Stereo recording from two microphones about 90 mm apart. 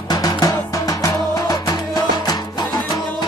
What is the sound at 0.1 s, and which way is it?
Music, 45° left (ahead or behind).